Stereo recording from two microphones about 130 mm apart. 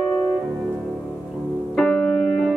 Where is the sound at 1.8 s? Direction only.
5° left (ahead or behind).